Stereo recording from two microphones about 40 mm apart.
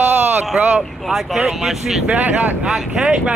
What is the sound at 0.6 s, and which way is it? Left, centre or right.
Speech, right.